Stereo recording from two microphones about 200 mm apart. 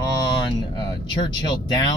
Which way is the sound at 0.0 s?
20° left (ahead or behind).